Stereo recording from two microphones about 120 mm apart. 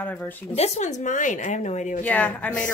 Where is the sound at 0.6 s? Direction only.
70° left (ahead or behind).